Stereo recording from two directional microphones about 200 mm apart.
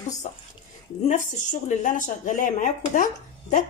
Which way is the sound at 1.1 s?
40° left (ahead or behind).